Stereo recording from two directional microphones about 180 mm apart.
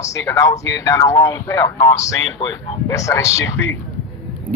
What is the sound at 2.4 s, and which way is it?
Speech, 30° left (ahead or behind).